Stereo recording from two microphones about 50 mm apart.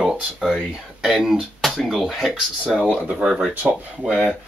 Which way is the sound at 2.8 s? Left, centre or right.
Right.